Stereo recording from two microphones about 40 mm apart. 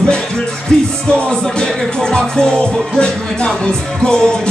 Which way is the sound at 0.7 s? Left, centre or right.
Left.